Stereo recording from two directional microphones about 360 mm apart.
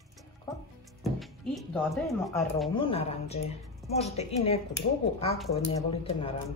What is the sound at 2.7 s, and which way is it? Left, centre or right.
A woman's voice, centre.